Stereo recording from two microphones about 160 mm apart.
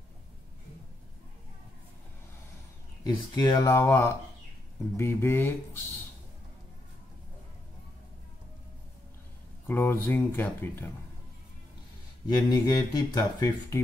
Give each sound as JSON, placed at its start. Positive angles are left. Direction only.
{"t": 3.0, "sound": "speech", "side_deg": 25}
{"t": 9.7, "sound": "speech", "side_deg": 15}
{"t": 12.3, "sound": "speech", "side_deg": 25}